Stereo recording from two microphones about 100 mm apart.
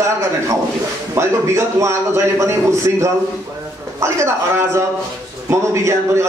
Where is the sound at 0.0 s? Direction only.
30° right (ahead or behind).